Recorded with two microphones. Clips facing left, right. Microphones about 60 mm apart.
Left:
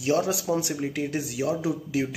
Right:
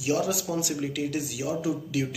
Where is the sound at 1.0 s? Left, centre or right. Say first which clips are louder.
Left 2 dB; left.